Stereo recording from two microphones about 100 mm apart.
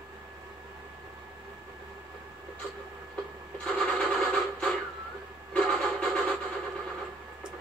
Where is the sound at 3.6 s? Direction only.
5° left (ahead or behind).